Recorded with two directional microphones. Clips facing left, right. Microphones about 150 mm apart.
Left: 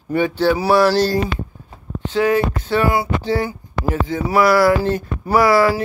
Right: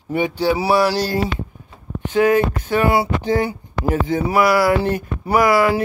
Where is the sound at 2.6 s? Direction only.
45° right (ahead or behind).